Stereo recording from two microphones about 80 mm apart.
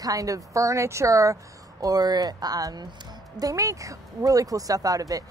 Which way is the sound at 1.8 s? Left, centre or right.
Right.